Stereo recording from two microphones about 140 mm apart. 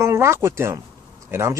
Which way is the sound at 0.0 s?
20° right (ahead or behind).